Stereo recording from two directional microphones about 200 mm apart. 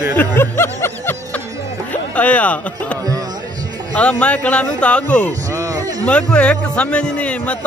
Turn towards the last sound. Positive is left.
turn(degrees=5)  # may be behind; listen again after turning